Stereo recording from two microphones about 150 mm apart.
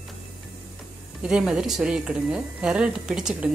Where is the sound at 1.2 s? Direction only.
5° right (ahead or behind).